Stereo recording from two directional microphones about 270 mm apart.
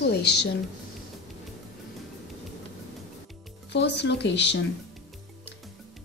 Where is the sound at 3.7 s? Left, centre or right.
Left.